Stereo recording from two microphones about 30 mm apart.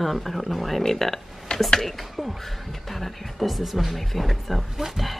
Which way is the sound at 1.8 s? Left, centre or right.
Centre.